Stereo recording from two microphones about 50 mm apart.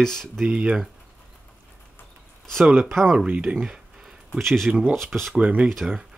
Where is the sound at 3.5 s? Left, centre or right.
Right.